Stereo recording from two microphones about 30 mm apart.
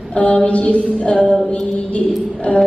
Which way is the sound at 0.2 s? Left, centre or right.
Left.